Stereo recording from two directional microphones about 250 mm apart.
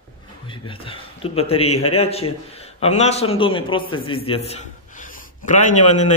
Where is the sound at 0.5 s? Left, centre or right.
Left.